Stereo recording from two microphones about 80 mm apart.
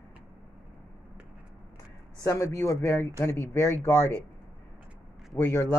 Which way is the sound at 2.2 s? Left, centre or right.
Left.